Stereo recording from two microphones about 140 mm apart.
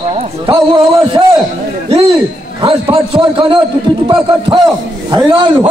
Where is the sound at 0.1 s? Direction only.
40° right (ahead or behind).